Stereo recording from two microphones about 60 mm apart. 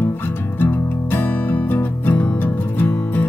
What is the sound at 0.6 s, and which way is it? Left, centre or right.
Music, left.